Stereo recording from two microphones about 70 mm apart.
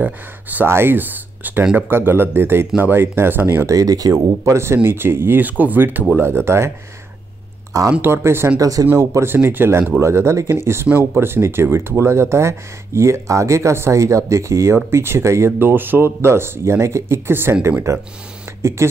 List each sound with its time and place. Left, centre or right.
0.0 s speech: right
0.7 s speech: right
1.6 s speech: centre
1.9 s speech: right
3.6 s speech: right
4.8 s speech: right
8.0 s speech: right
8.5 s speech: right
9.2 s speech: right
18.6 s speech: right